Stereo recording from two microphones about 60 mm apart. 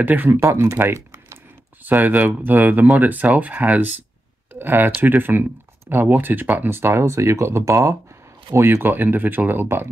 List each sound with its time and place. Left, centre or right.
0.0 s speech: right
0.3 s speech: right
0.9 s typing: right
1.8 s speech: right
8.8 s speech: right